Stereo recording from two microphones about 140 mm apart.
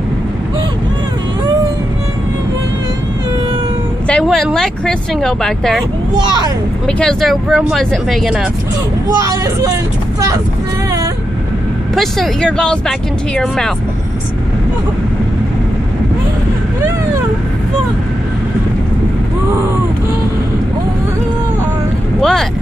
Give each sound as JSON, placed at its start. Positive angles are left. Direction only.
{"t": 4.1, "sound": "speech", "side_deg": 5}
{"t": 6.9, "sound": "speech", "side_deg": 5}
{"t": 9.2, "sound": "speech", "side_deg": -25}
{"t": 11.9, "sound": "speech", "side_deg": 0}
{"t": 22.2, "sound": "speech", "side_deg": 5}